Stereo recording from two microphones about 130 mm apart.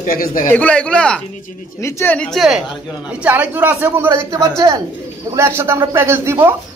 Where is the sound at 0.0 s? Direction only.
90° left.